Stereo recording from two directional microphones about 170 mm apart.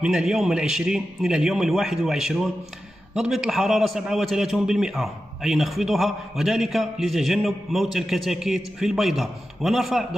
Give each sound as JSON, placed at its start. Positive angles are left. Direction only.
{"t": 0.0, "sound": "a man's voice", "side_deg": -5}